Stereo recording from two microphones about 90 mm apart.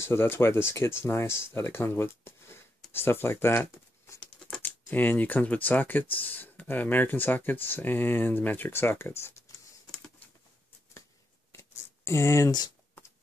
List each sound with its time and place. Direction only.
0.0 s speech: 25° left (ahead or behind)
11.5 s a sound: 30° left (ahead or behind)
12.4 s speech: 50° left (ahead or behind)